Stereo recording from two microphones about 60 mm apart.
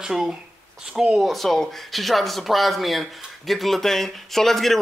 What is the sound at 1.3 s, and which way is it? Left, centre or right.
Speech, centre.